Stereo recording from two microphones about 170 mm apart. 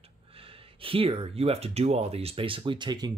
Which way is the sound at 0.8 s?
35° right (ahead or behind).